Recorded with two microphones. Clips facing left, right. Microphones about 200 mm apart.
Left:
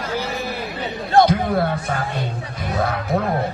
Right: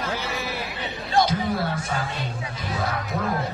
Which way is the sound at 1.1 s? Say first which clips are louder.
Left 6 dB; 55° left (ahead or behind).